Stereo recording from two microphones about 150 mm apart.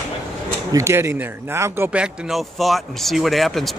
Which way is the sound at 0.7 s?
20° right (ahead or behind).